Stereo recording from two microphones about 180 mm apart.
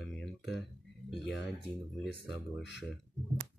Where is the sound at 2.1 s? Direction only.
75° left (ahead or behind).